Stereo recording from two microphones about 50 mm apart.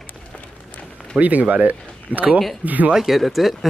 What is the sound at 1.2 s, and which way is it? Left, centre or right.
Speech, right.